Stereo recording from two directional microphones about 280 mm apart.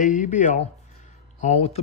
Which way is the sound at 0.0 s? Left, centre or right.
Left.